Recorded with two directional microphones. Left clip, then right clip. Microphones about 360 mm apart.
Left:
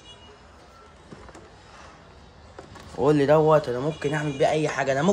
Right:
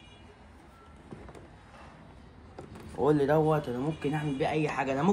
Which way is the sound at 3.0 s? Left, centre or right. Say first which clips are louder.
Left 6 dB; left.